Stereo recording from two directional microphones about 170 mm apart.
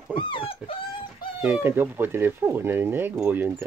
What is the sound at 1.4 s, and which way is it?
Speech, 10° right (ahead or behind).